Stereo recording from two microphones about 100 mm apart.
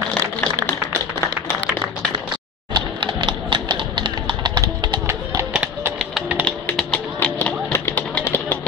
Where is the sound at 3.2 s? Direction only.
50° right (ahead or behind).